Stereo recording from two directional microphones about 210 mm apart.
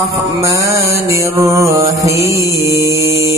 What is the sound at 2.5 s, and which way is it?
Mantra, 15° right (ahead or behind).